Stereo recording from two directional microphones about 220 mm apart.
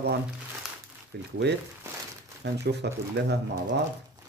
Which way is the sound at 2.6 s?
50° right (ahead or behind).